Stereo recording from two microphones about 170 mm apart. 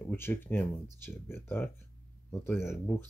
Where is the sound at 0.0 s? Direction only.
10° left (ahead or behind).